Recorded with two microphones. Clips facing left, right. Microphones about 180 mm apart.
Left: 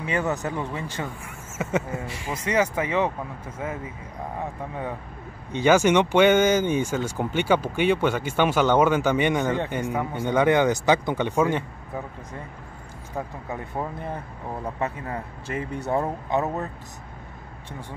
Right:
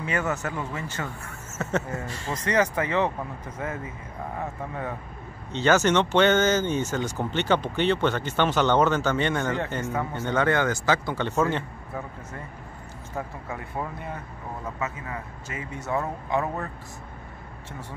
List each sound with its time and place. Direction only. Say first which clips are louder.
0.0 s speech: left 2 dB; 15° left (ahead or behind)
5.5 s speech: left 3 dB; 10° left (ahead or behind)
15.5 s speech: left 7 dB; 50° left (ahead or behind)
15.9 s speech: left 2 dB; 25° left (ahead or behind)